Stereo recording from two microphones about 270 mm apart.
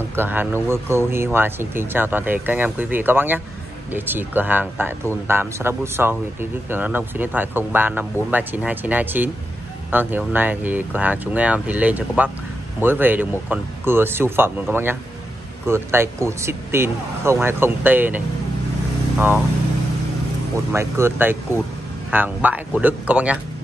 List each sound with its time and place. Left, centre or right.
0.1 s speech: centre
20.7 s speech: centre